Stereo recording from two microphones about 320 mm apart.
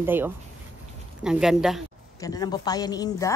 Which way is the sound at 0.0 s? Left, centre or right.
Centre.